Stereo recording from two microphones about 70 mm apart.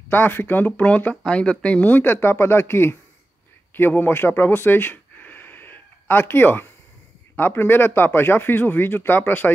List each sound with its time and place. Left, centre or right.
0.1 s speech: left